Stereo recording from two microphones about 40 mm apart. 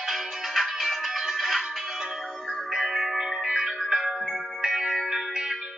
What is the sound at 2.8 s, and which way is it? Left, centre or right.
Music, centre.